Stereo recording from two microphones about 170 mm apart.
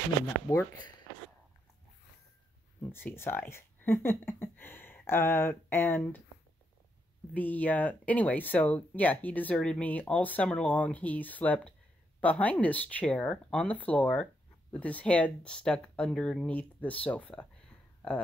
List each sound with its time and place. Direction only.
0.5 s speech: 15° left (ahead or behind)
2.8 s speech: 10° left (ahead or behind)
7.3 s speech: 10° left (ahead or behind)